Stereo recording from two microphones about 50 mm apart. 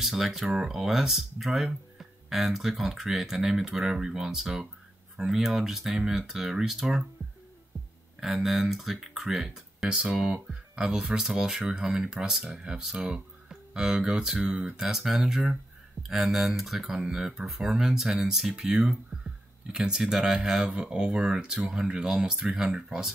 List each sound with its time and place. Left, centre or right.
0.0 s speech: centre
7.2 s music: right
8.2 s speech: centre
14.8 s speech: centre